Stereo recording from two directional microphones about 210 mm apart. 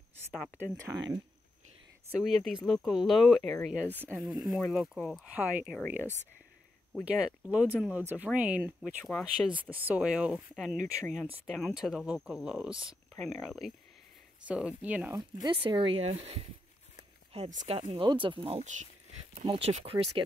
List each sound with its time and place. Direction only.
0.3 s speech: 5° right (ahead or behind)
2.0 s speech: centre (ahead or behind)
7.1 s speech: 5° right (ahead or behind)
15.4 s speech: 20° right (ahead or behind)